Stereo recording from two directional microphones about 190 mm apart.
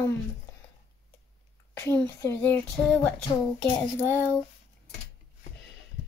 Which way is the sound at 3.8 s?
15° left (ahead or behind).